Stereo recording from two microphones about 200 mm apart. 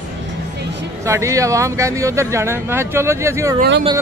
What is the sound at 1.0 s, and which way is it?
Speech, 15° right (ahead or behind).